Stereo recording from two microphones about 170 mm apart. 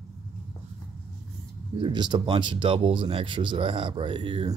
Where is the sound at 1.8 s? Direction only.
25° right (ahead or behind).